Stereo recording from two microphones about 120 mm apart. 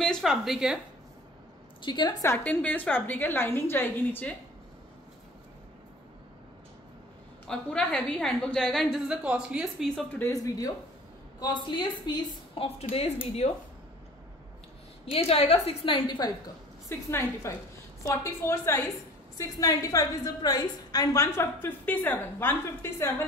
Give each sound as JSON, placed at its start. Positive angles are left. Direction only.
{"t": 0.0, "sound": "a sound", "side_deg": 5}
{"t": 1.8, "sound": "a woman's voice", "side_deg": 40}
{"t": 2.2, "sound": "a woman's voice", "side_deg": 15}
{"t": 7.4, "sound": "a woman's voice", "side_deg": 5}
{"t": 9.0, "sound": "speech", "side_deg": -10}
{"t": 10.2, "sound": "a woman's voice", "side_deg": 30}
{"t": 12.6, "sound": "a woman's voice", "side_deg": 60}
{"t": 15.2, "sound": "a woman's voice", "side_deg": 55}
{"t": 17.1, "sound": "a woman's voice", "side_deg": 25}